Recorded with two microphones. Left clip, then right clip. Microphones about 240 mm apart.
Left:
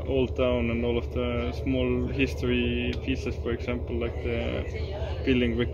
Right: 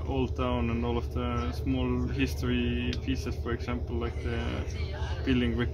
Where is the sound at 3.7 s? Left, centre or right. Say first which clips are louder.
Left 4 dB; centre.